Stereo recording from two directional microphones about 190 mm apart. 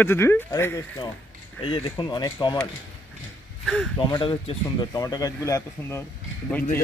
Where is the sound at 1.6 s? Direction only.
30° left (ahead or behind).